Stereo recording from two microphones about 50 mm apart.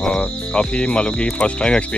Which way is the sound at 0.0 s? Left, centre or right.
Centre.